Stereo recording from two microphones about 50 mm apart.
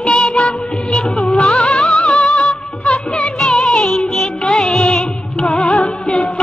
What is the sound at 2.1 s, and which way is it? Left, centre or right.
Music, left.